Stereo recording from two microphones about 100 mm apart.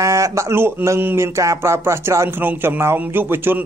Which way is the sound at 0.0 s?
30° right (ahead or behind).